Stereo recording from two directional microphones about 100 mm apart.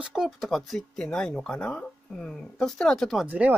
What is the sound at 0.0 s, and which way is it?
Speech, 5° right (ahead or behind).